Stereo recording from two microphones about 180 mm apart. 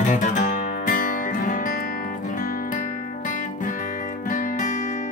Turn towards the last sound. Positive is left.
turn(degrees=45)  # may be behind; listen again after turning